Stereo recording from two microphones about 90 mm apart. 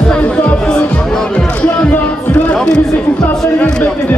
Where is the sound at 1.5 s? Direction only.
15° left (ahead or behind).